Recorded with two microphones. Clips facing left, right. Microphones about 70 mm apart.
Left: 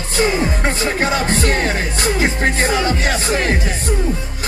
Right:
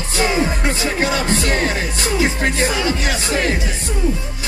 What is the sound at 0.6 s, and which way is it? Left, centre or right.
Music, left.